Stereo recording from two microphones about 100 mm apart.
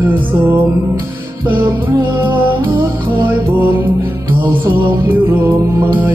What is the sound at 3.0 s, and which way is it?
Music, 20° right (ahead or behind).